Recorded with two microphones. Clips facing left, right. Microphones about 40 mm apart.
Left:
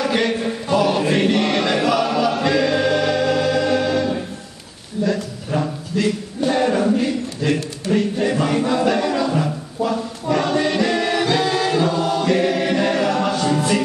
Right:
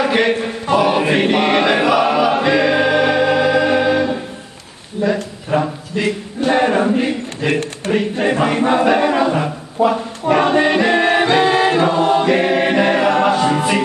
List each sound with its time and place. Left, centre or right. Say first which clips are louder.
0.0 s chant: right 4 dB; right
5.0 s a sound: right 3 dB; right
7.9 s chant: right 2 dB; right